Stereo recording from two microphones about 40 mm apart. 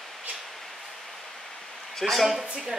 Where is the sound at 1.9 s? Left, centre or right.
Centre.